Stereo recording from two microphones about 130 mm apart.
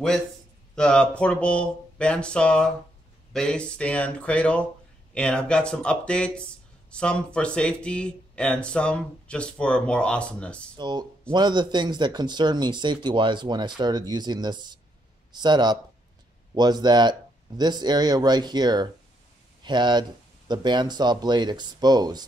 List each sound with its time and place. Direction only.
0.7 s speech: 5° left (ahead or behind)
10.8 s speech: 35° right (ahead or behind)